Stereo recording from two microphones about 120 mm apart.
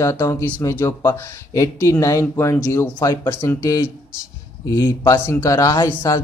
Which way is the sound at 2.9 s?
35° left (ahead or behind).